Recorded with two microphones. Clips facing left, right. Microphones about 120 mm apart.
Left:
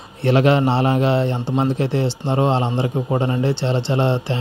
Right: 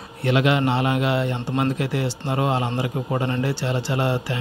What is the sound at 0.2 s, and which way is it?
A man's voice, 35° left (ahead or behind).